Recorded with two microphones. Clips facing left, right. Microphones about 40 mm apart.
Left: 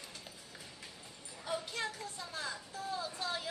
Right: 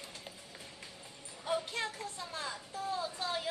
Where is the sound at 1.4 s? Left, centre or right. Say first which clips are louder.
Right 3 dB; right.